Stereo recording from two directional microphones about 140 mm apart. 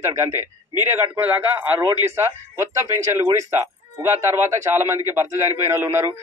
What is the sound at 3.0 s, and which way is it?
A man's voice, 20° right (ahead or behind).